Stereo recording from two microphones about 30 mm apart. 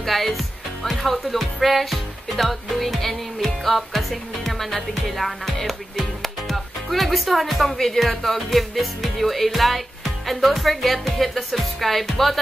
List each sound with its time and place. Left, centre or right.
0.0 s speech: centre